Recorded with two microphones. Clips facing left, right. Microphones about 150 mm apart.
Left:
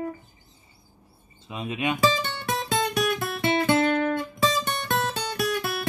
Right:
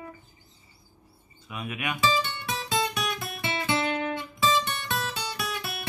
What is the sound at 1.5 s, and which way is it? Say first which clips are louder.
Speech: left 5 dB; 25° left (ahead or behind).